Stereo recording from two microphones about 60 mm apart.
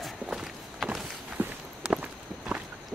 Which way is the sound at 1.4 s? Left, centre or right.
Right.